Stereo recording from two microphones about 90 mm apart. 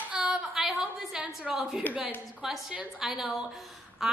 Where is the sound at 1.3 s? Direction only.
5° right (ahead or behind).